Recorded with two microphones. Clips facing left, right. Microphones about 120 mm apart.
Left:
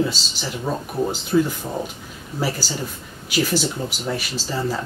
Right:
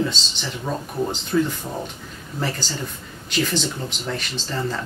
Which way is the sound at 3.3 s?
5° left (ahead or behind).